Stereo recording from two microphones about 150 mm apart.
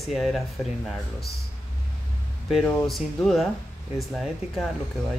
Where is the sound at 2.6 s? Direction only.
Centre (ahead or behind).